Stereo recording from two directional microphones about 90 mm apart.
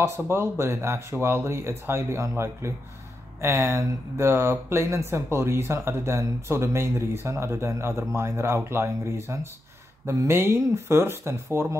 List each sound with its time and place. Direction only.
0.0 s speech: 30° right (ahead or behind)